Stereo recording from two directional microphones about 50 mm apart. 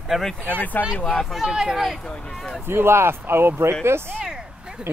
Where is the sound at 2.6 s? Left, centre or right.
Right.